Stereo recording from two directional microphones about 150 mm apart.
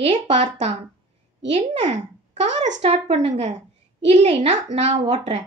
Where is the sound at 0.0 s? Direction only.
50° right (ahead or behind).